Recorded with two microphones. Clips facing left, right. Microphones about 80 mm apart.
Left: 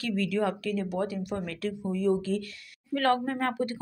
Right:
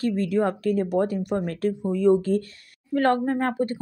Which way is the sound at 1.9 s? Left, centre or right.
Right.